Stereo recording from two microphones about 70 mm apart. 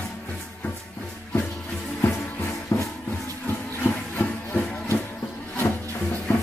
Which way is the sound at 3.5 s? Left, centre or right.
Left.